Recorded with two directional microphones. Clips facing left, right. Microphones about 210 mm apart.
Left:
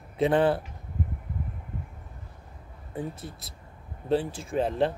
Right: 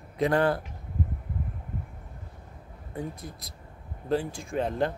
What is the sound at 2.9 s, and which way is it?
Speech, 30° left (ahead or behind).